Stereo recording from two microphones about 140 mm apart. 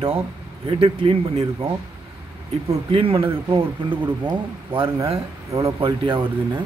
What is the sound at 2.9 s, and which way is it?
Speech, 40° right (ahead or behind).